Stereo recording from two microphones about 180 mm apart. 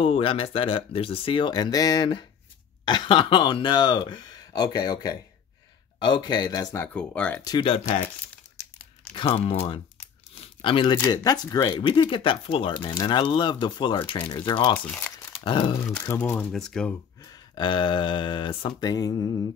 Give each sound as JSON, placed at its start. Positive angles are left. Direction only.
{"t": 0.0, "sound": "speech", "side_deg": 30}
{"t": 7.4, "sound": "speech", "side_deg": 25}
{"t": 9.1, "sound": "speech", "side_deg": 30}
{"t": 10.4, "sound": "crumpling", "side_deg": 30}
{"t": 11.0, "sound": "speech", "side_deg": 20}
{"t": 14.9, "sound": "crumpling", "side_deg": 10}
{"t": 15.4, "sound": "speech", "side_deg": 25}
{"t": 15.8, "sound": "speech", "side_deg": 10}
{"t": 17.2, "sound": "speech", "side_deg": 25}